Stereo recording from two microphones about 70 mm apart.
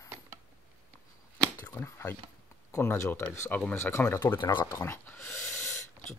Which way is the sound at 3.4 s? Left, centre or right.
Left.